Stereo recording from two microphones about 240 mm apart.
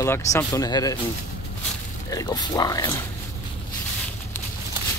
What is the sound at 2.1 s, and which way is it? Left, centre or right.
Speech, centre.